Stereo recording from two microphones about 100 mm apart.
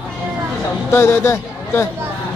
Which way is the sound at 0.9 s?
25° left (ahead or behind).